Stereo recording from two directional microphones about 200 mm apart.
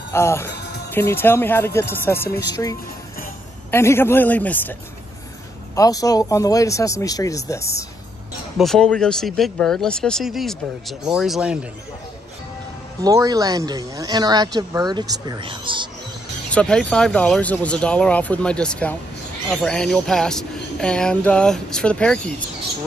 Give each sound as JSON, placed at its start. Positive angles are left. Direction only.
{"t": 0.1, "sound": "speech", "side_deg": 15}
{"t": 0.6, "sound": "music", "side_deg": 55}
{"t": 0.9, "sound": "speech", "side_deg": 10}
{"t": 5.8, "sound": "speech", "side_deg": 15}
{"t": 8.5, "sound": "speech", "side_deg": 0}
{"t": 13.0, "sound": "speech", "side_deg": -15}
{"t": 16.4, "sound": "speech", "side_deg": 5}